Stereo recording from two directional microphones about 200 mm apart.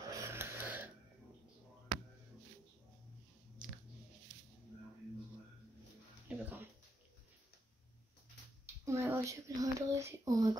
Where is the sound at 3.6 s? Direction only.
5° right (ahead or behind).